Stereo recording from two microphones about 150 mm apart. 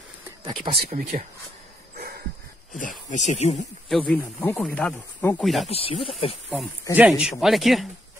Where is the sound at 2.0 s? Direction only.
90° right.